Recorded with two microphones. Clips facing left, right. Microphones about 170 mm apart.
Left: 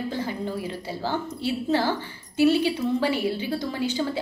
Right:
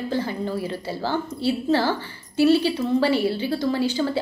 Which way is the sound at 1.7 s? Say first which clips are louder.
Even; 15° left (ahead or behind).